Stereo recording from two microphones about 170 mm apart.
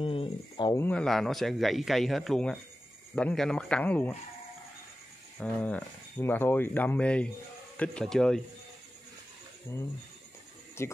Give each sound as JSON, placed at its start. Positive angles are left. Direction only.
{"t": 0.0, "sound": "a sound", "side_deg": 30}
{"t": 0.7, "sound": "a man's voice", "side_deg": 10}
{"t": 5.4, "sound": "a man's voice", "side_deg": 5}
{"t": 10.8, "sound": "speech", "side_deg": 15}